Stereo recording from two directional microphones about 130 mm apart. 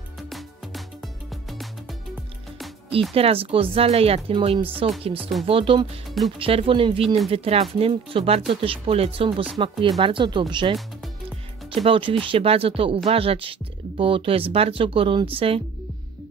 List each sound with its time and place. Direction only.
0.3 s music: centre (ahead or behind)
3.2 s speech: 45° right (ahead or behind)